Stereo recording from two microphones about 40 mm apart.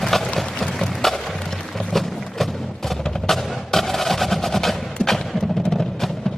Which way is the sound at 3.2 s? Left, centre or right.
Centre.